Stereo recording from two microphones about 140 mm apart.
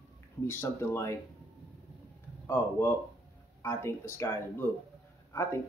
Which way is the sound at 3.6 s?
15° left (ahead or behind).